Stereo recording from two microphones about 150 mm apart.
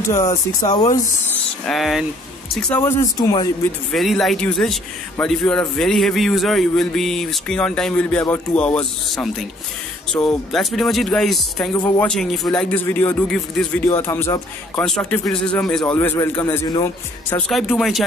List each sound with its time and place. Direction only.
0.1 s speech: 20° left (ahead or behind)
1.7 s a man's voice: centre (ahead or behind)
2.7 s speech: 15° left (ahead or behind)
3.2 s speech: 30° left (ahead or behind)
3.9 s a man's voice: centre (ahead or behind)
17.5 s a man's voice: centre (ahead or behind)